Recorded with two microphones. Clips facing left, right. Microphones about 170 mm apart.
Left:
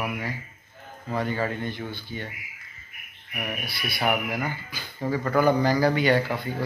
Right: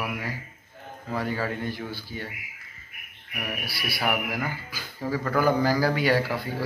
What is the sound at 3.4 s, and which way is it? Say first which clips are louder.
A man's voice: left 1 dB; 5° right (ahead or behind).